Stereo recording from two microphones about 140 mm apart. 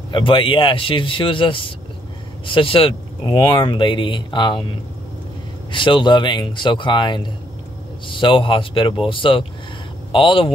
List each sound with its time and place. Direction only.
0.1 s speech: 35° left (ahead or behind)
5.7 s speech: 35° left (ahead or behind)